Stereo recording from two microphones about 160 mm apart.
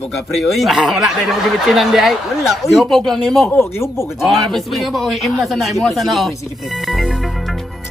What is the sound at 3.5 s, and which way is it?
Speech, 15° left (ahead or behind).